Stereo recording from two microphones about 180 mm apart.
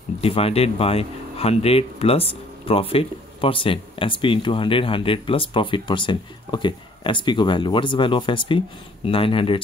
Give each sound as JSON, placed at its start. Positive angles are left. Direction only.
{"t": 0.2, "sound": "speech", "side_deg": 35}